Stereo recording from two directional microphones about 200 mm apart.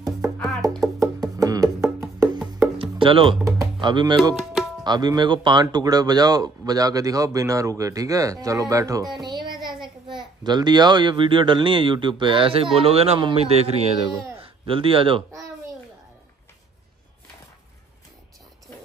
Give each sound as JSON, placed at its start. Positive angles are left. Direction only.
{"t": 0.4, "sound": "music", "side_deg": 0}
{"t": 1.4, "sound": "music", "side_deg": -15}
{"t": 2.8, "sound": "music", "side_deg": -25}
{"t": 3.8, "sound": "speech", "side_deg": -20}
{"t": 9.2, "sound": "a sound", "side_deg": -20}
{"t": 10.4, "sound": "speech", "side_deg": -20}